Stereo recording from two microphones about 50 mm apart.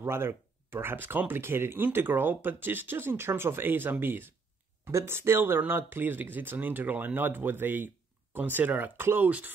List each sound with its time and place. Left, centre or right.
0.0 s speech: right
4.8 s speech: right